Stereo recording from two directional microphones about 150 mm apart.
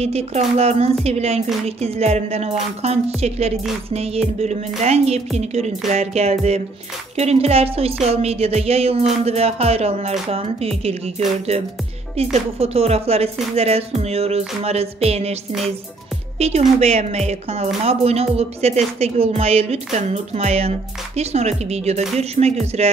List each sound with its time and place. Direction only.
0.0 s speech: 45° right (ahead or behind)
16.3 s speech: 45° right (ahead or behind)